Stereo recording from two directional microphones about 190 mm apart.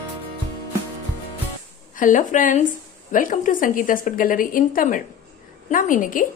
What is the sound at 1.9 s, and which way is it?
A woman's voice, 45° left (ahead or behind).